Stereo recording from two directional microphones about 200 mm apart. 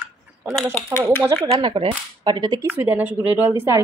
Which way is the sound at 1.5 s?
25° right (ahead or behind).